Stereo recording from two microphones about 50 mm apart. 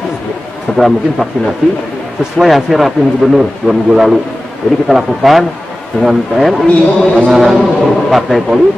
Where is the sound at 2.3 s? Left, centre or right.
Centre.